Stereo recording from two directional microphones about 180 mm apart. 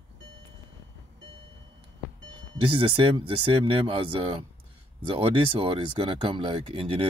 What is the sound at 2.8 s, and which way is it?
Speech, 30° right (ahead or behind).